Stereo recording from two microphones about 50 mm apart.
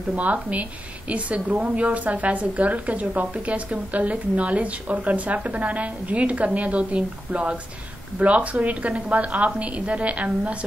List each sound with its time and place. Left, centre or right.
0.1 s a woman's voice: right